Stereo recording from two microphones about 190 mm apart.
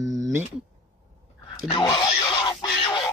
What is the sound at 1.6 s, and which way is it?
Speech, 25° left (ahead or behind).